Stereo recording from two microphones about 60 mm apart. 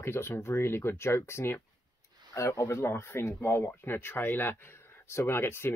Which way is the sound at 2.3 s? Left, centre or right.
Left.